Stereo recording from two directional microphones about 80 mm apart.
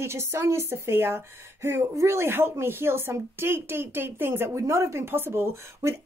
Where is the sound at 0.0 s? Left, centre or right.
Right.